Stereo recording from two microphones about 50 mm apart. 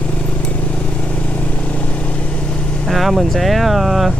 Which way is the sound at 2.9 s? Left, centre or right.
Centre.